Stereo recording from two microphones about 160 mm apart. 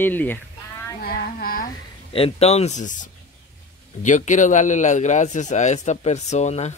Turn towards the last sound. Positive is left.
turn(degrees=45)  # may be behind; listen again after turning